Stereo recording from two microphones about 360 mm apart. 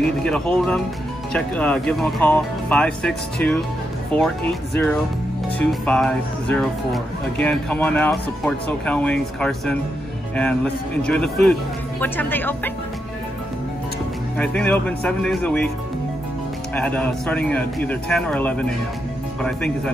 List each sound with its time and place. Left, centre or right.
0.2 s speech: centre
14.4 s speech: centre
16.7 s speech: centre